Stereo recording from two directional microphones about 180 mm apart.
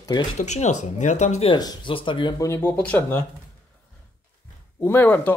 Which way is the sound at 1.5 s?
25° left (ahead or behind).